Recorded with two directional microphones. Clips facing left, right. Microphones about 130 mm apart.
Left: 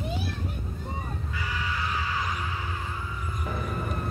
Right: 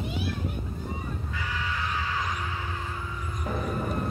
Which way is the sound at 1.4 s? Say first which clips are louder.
Left 1 dB; 5° left (ahead or behind).